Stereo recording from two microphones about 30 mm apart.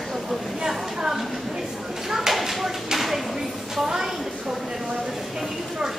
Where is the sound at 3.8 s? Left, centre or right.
Right.